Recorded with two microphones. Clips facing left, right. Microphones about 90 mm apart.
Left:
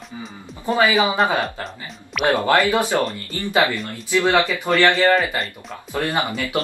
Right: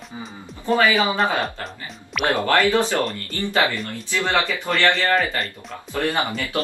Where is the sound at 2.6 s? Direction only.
15° left (ahead or behind).